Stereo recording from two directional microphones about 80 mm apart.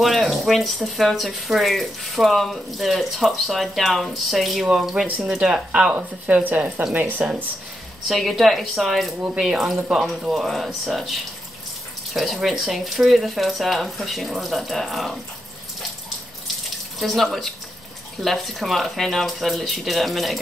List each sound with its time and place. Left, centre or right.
0.0 s speech: centre; by 7.2 s right
8.1 s speech: centre
17.0 s speech: centre